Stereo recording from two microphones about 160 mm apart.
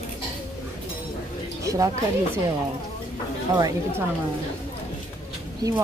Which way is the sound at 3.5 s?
20° right (ahead or behind).